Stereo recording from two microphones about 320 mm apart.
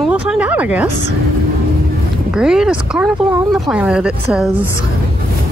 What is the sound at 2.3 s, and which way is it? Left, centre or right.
Speech, centre.